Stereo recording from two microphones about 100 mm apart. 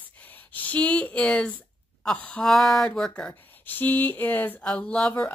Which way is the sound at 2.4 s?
5° left (ahead or behind).